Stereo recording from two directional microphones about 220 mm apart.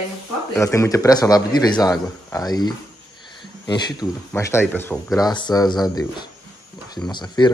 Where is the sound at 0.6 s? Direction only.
15° left (ahead or behind).